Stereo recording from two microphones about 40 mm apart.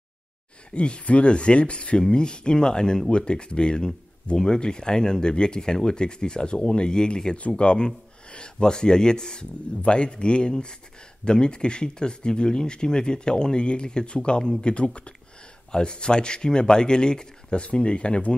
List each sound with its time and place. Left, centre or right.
0.7 s speech: left
7.3 s speech: left